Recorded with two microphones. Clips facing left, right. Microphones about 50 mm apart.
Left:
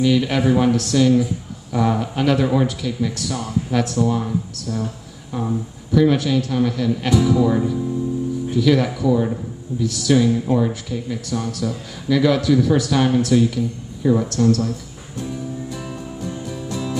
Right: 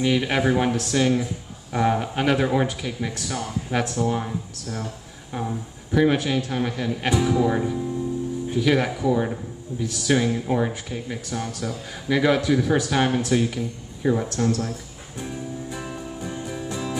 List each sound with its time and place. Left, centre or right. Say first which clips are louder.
0.0 s speech: left 4 dB; right
15.9 s music: left 3 dB; centre